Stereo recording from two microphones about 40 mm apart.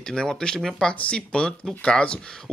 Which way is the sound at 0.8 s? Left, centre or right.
Left.